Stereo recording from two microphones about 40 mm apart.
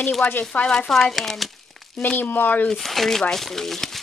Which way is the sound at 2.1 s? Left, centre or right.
Left.